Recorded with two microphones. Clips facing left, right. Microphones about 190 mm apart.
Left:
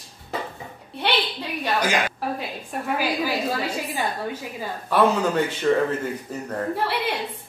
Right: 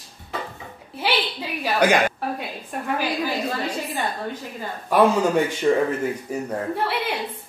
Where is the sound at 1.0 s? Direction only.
5° right (ahead or behind).